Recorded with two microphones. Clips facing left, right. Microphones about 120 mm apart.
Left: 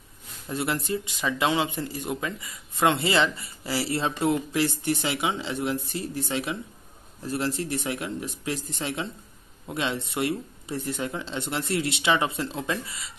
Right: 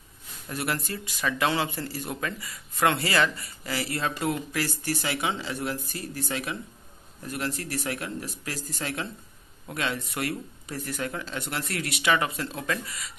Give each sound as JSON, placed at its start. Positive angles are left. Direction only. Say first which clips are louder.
{"t": 0.5, "sound": "speech", "louder": "left 3 dB", "side_deg": 25}